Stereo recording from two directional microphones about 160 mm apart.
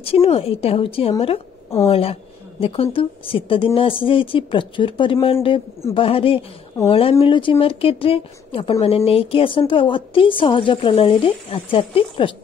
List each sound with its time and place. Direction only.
0.0 s a woman's voice: 40° left (ahead or behind)